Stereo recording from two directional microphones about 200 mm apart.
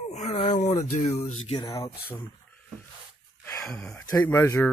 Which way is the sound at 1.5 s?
15° left (ahead or behind).